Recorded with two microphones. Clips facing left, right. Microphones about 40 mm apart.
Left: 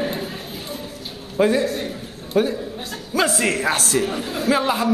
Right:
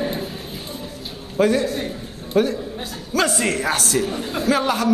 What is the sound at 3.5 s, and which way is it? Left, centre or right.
Speech, left.